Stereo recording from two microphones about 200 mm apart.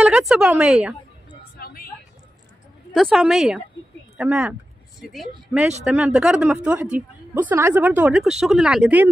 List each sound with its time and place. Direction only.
0.0 s a woman's voice: 5° right (ahead or behind)
1.6 s vehicle: 50° left (ahead or behind)
2.9 s a woman's voice: centre (ahead or behind)